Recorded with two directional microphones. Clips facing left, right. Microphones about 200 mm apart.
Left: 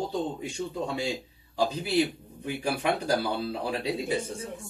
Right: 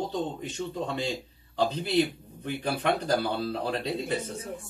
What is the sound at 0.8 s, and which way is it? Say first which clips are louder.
A man's voice: left 1 dB; 10° left (ahead or behind).